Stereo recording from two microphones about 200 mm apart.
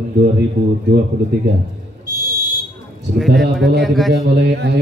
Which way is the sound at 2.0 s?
20° left (ahead or behind).